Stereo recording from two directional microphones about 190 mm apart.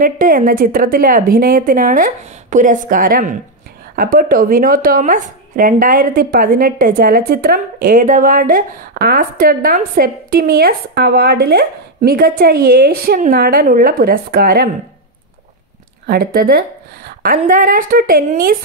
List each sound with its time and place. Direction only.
0.0 s speech: 45° right (ahead or behind)
16.1 s a woman's voice: 50° right (ahead or behind)